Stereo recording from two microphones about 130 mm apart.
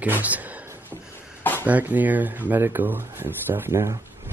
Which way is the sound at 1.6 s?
15° right (ahead or behind).